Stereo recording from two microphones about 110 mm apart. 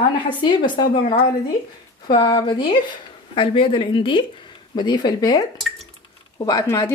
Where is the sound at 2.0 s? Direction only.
40° left (ahead or behind).